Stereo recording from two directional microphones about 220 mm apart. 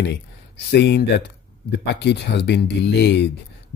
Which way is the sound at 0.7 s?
50° left (ahead or behind).